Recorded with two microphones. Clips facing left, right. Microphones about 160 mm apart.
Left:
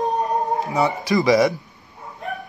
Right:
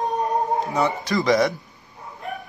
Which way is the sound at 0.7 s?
Centre (ahead or behind).